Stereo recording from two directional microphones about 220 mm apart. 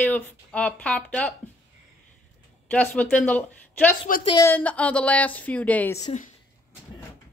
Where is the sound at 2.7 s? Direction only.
5° left (ahead or behind).